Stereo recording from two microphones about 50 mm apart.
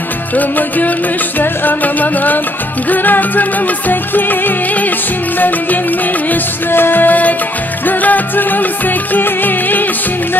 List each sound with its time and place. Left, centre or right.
0.4 s music: left
6.3 s music: left